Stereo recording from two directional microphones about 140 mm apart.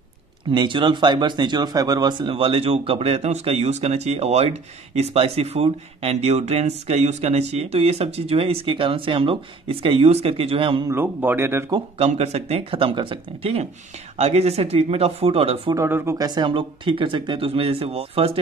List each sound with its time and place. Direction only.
0.5 s speech: 35° right (ahead or behind)
10.9 s a man's voice: 15° right (ahead or behind)
12.0 s speech: 50° right (ahead or behind)
15.7 s speech: 15° right (ahead or behind)
16.2 s speech: 30° right (ahead or behind)